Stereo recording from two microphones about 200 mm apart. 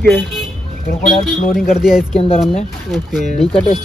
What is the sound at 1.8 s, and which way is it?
Speech, 5° right (ahead or behind).